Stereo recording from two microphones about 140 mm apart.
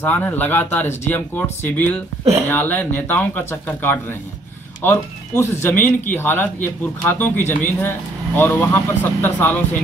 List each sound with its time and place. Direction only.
0.0 s speech: 15° left (ahead or behind)